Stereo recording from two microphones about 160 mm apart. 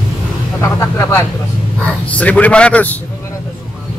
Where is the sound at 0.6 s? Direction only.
15° left (ahead or behind).